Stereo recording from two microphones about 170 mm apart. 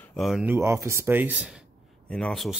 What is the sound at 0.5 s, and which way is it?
Speech, 15° right (ahead or behind).